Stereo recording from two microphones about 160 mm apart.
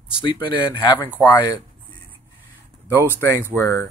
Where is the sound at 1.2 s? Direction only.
10° left (ahead or behind).